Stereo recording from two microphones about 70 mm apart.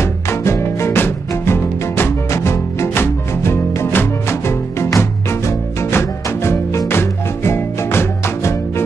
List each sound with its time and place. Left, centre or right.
0.0 s music: left